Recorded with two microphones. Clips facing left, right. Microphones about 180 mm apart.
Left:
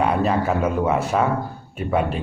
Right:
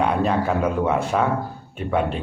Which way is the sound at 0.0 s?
Centre (ahead or behind).